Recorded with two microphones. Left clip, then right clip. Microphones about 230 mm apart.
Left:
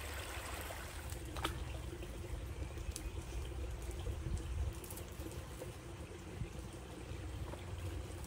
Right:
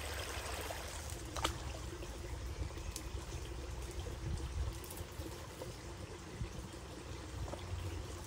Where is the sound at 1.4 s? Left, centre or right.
Right.